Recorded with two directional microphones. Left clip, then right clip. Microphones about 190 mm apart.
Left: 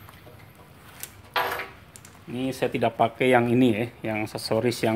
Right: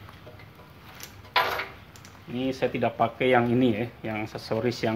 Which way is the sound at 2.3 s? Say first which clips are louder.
Left 1 dB; 45° left (ahead or behind).